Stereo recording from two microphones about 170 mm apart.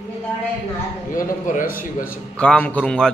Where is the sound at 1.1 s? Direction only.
55° left (ahead or behind).